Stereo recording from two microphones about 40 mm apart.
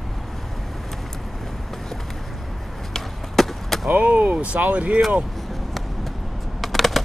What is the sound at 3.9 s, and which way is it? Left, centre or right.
Speech, right.